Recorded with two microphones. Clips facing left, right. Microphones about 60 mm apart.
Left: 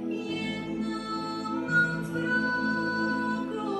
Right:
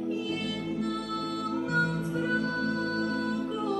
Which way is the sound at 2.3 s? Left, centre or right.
Left.